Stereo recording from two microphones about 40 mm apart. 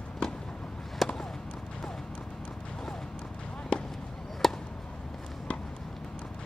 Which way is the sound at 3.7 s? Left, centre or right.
Left.